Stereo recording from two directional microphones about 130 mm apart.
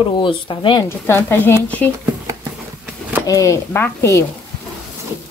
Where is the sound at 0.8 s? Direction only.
20° left (ahead or behind).